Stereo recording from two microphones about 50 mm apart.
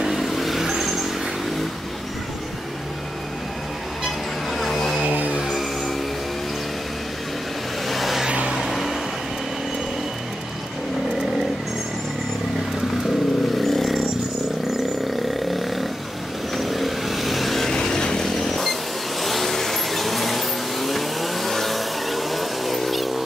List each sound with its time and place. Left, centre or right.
0.0 s vehicle: centre
4.6 s a sound: centre
5.1 s music: right
5.4 s music: centre
7.9 s vehicle: centre
8.3 s vehicle: right
8.5 s vehicle: centre
13.6 s vehicle: centre
15.3 s roar: centre
16.5 s vehicle: centre